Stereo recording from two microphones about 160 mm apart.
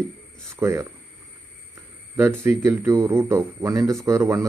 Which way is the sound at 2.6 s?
15° right (ahead or behind).